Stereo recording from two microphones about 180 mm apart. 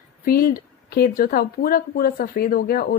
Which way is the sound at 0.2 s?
55° left (ahead or behind).